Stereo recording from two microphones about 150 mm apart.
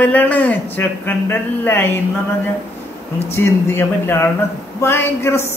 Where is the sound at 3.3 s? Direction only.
15° left (ahead or behind).